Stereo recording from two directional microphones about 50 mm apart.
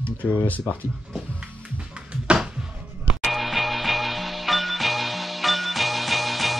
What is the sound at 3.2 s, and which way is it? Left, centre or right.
Music, centre.